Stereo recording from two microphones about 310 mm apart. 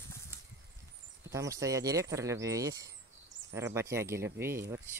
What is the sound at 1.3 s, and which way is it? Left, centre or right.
Speech, centre.